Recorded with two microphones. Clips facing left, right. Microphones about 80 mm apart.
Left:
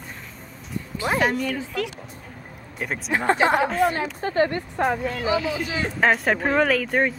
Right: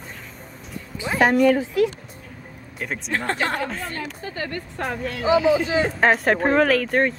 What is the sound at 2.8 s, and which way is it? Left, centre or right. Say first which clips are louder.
Speech: left 1 dB; centre.